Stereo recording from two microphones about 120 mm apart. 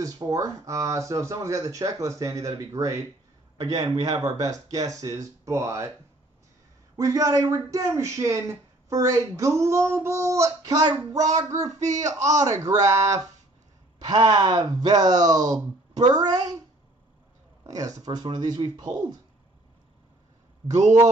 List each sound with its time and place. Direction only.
0.0 s speech: 30° right (ahead or behind)
7.0 s speech: 30° right (ahead or behind)
11.8 s speech: 75° right (ahead or behind)
12.5 s speech: 25° right (ahead or behind)
17.7 s speech: 30° right (ahead or behind)